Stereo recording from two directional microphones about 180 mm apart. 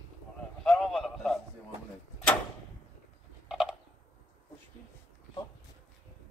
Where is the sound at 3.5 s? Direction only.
5° right (ahead or behind).